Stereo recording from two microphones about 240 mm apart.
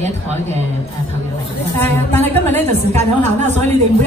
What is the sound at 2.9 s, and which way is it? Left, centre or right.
Speech, right.